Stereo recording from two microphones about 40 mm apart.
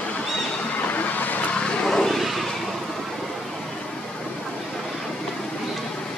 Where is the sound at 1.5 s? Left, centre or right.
Centre.